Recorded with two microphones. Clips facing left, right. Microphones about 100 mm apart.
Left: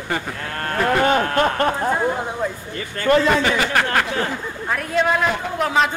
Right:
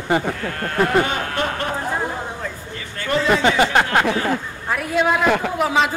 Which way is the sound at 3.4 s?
25° right (ahead or behind).